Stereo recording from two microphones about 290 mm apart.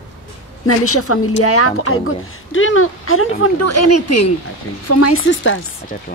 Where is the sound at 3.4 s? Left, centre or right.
Left.